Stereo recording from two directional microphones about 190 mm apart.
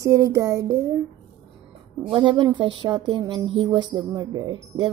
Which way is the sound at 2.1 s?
25° right (ahead or behind).